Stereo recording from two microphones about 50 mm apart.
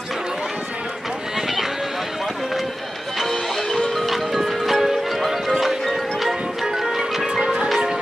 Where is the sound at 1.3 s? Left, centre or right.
Centre.